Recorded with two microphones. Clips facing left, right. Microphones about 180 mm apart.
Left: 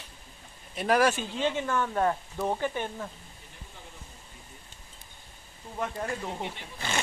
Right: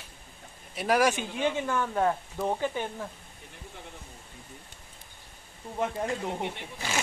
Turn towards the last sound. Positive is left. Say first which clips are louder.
# even
turn(degrees=-5)  # may be behind; listen again after turning